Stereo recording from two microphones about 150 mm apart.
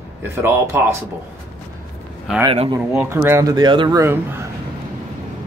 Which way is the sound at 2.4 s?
35° right (ahead or behind).